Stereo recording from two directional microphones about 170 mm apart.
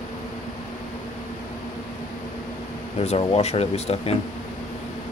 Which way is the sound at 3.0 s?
40° left (ahead or behind).